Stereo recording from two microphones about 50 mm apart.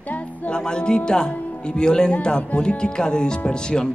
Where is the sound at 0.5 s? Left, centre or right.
Centre.